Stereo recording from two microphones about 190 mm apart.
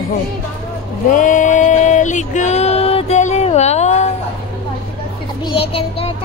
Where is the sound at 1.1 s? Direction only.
40° left (ahead or behind).